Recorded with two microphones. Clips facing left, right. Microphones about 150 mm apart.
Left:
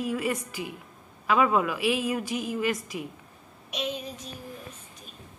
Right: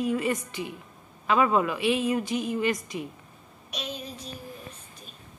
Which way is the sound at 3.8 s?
20° left (ahead or behind).